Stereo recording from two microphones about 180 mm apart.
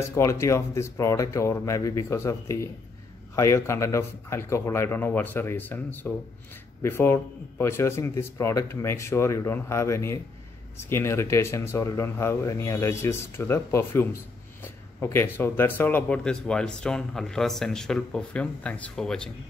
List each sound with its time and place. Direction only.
0.1 s speech: 15° left (ahead or behind)